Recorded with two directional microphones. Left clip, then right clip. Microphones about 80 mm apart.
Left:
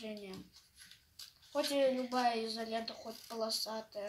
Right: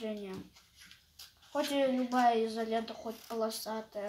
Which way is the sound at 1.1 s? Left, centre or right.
Left.